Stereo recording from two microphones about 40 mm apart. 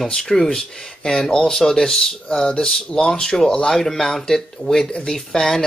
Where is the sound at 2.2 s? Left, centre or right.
Left.